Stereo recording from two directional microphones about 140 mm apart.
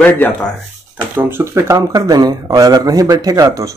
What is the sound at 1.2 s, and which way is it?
Speech, 15° right (ahead or behind).